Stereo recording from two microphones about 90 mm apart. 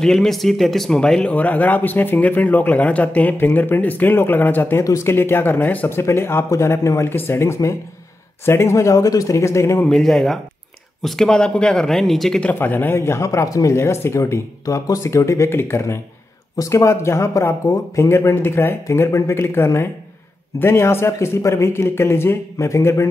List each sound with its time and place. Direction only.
0.0 s speech: 5° left (ahead or behind); by 9.8 s 30° left (ahead or behind)
9.8 s speech: 5° left (ahead or behind)
12.4 s speech: 20° left (ahead or behind)